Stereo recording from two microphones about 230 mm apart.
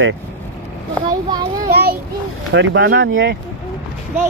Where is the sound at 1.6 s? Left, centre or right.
Right.